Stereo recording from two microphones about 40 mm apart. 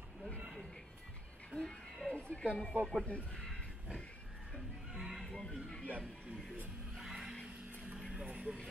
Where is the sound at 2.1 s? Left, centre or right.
Left.